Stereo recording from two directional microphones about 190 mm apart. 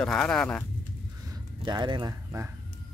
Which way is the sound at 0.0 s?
5° left (ahead or behind).